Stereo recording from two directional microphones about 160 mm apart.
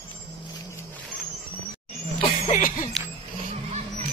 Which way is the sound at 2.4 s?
50° left (ahead or behind).